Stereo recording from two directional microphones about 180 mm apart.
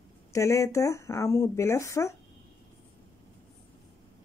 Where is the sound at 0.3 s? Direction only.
15° left (ahead or behind).